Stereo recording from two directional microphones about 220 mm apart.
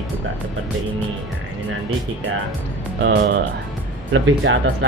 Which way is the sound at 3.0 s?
50° right (ahead or behind).